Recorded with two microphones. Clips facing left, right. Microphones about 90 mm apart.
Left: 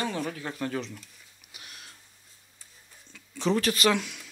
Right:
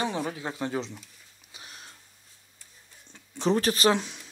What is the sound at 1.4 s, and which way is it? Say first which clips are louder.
Printer: right 2 dB; 30° right (ahead or behind).